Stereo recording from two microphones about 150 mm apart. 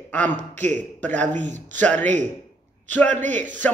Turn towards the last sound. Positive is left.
turn(degrees=10)  # may be behind; listen again after turning